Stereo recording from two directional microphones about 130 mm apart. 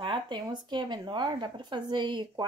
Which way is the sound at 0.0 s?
35° right (ahead or behind).